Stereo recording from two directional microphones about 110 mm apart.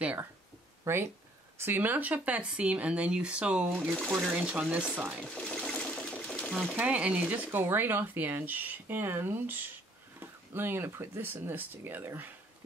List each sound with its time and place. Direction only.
0.0 s a sound: 15° right (ahead or behind)
0.9 s speech: 25° right (ahead or behind)
4.0 s speech: centre (ahead or behind)
5.2 s sewing machine: 5° left (ahead or behind)
6.5 s speech: 5° right (ahead or behind); by 12.3 s 20° right (ahead or behind)